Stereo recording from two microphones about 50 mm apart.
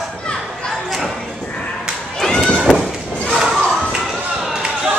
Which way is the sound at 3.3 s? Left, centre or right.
Centre.